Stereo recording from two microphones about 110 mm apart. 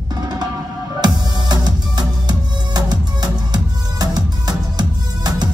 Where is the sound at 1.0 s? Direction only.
40° right (ahead or behind).